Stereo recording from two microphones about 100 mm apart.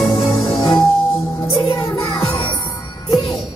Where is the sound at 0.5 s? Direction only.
55° left (ahead or behind).